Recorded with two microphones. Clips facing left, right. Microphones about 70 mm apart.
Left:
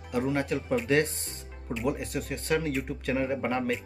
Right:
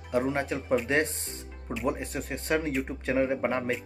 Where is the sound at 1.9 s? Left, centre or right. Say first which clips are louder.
Even; right.